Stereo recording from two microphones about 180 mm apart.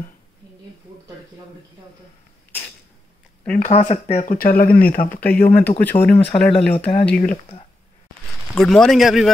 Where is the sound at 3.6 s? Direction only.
35° left (ahead or behind); by 5.5 s 60° left (ahead or behind).